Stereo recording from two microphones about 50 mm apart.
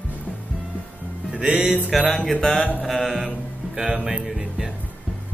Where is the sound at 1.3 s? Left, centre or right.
Right.